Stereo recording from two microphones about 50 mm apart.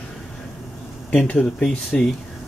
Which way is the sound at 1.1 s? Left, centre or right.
Left.